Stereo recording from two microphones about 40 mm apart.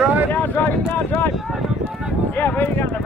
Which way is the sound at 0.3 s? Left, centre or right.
Left.